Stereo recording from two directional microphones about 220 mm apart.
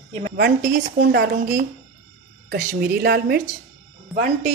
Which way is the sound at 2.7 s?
45° right (ahead or behind).